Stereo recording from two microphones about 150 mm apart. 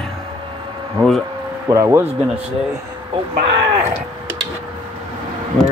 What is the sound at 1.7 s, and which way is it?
Speech, 20° right (ahead or behind).